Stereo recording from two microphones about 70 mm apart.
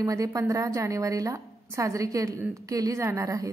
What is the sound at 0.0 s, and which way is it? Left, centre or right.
A woman's voice, right.